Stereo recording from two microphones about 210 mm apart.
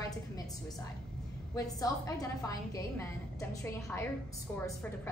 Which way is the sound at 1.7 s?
15° left (ahead or behind).